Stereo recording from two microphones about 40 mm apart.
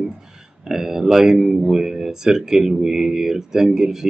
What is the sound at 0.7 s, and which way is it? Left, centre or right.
Speech, centre.